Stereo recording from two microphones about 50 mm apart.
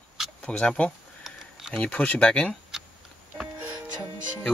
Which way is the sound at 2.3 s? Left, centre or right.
Centre.